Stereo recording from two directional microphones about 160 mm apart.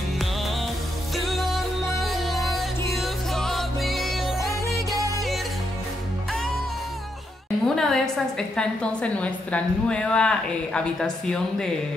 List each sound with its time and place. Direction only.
1.1 s music: centre (ahead or behind)
2.3 s music: 20° left (ahead or behind)
3.0 s music: centre (ahead or behind)
7.7 s a woman's voice: 5° left (ahead or behind)